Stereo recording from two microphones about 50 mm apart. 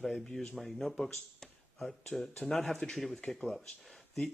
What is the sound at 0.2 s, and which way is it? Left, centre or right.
Speech, centre.